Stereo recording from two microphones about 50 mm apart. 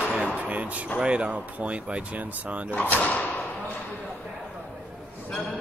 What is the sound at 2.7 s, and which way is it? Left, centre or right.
Speech, left.